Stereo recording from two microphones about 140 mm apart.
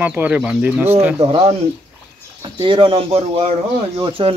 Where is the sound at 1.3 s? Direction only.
40° right (ahead or behind).